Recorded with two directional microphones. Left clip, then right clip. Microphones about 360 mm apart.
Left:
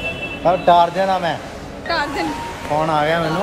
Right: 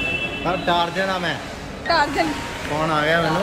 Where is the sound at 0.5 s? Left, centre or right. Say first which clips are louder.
Left 9 dB; left.